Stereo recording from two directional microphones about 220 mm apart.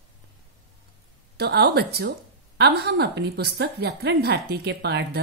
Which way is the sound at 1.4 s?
45° right (ahead or behind).